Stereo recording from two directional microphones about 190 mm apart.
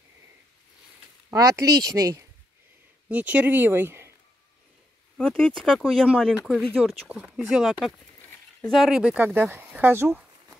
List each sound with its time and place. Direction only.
1.3 s speech: 15° right (ahead or behind)
3.1 s speech: 10° right (ahead or behind)
5.1 s speech: 5° left (ahead or behind); by 10.2 s 10° right (ahead or behind)